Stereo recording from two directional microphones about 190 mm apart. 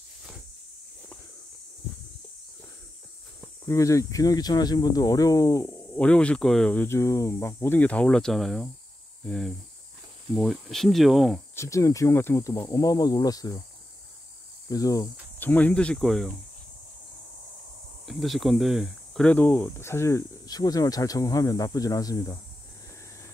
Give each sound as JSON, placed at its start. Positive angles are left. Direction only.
{"t": 3.6, "sound": "speech", "side_deg": 15}
{"t": 11.5, "sound": "speech", "side_deg": 15}
{"t": 14.7, "sound": "speech", "side_deg": 20}
{"t": 18.0, "sound": "speech", "side_deg": 0}